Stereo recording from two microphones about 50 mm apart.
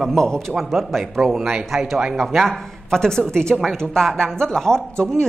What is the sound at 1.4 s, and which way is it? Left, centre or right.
Speech, centre.